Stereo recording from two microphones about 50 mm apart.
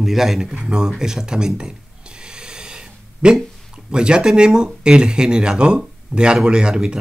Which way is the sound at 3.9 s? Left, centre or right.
Centre.